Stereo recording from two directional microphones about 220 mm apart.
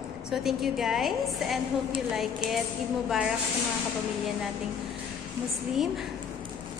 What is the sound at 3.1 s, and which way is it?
Music, 5° right (ahead or behind).